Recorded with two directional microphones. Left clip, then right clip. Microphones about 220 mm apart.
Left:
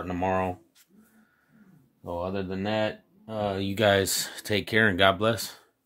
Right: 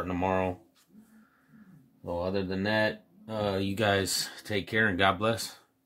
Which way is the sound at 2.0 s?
20° left (ahead or behind).